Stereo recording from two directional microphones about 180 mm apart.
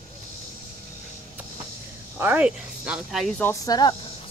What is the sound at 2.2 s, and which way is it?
Speech, 10° right (ahead or behind).